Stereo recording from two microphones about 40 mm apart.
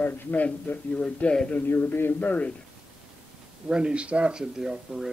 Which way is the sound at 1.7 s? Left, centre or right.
Left.